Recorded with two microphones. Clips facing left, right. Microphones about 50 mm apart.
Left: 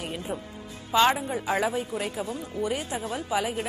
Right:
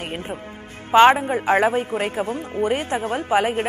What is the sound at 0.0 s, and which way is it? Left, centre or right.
A man's voice, right.